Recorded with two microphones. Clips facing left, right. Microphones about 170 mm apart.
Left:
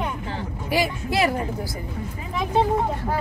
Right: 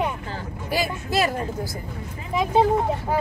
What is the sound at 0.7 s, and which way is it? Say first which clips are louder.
Speech: left 1 dB; 15° left (ahead or behind).